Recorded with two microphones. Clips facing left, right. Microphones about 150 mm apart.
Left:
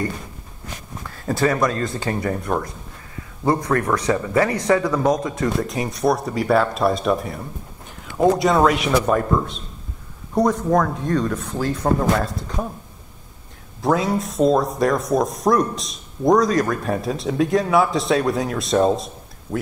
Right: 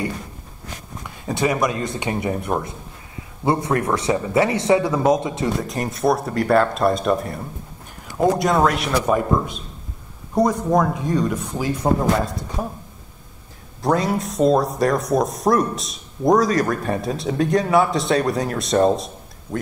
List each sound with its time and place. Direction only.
1.0 s speech: 15° right (ahead or behind)
5.6 s speech: centre (ahead or behind)
13.7 s speech: centre (ahead or behind)